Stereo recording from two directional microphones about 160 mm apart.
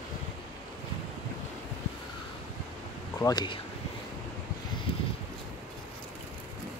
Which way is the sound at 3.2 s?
25° left (ahead or behind).